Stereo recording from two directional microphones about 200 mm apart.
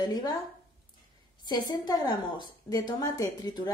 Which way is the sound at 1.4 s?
20° left (ahead or behind).